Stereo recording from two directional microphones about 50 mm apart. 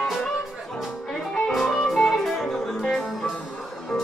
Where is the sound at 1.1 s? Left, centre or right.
Centre.